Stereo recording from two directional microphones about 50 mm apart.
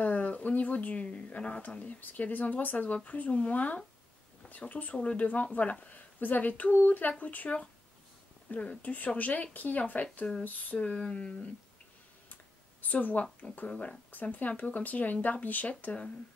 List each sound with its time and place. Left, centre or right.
0.0 s a woman's voice: left
10.8 s speech: centre
12.8 s a woman's voice: left
14.1 s a woman's voice: left